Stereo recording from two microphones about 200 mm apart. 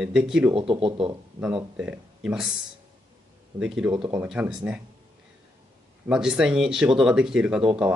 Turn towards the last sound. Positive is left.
turn(degrees=-5)  # may be behind; listen again after turning